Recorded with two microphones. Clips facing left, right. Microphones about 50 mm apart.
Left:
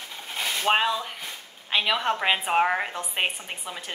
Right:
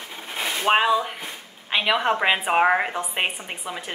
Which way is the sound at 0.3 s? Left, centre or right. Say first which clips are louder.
Right 3 dB; centre.